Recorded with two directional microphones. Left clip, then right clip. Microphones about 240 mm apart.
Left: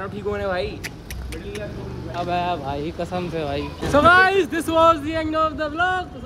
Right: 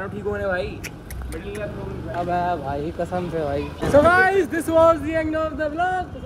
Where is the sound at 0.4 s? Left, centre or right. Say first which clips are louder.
Even; left.